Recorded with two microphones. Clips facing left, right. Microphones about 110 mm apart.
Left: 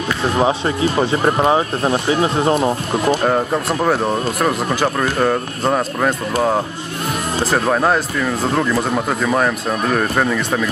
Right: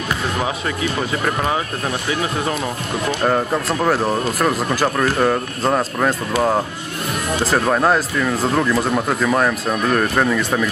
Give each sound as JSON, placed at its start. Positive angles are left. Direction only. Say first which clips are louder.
{"t": 0.4, "sound": "speech", "louder": "left 6 dB", "side_deg": 30}
{"t": 3.3, "sound": "speech", "louder": "left 1 dB", "side_deg": 0}